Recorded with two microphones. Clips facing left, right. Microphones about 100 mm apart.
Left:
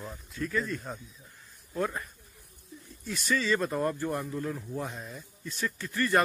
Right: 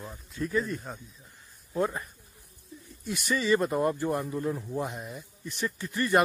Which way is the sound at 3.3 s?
15° right (ahead or behind).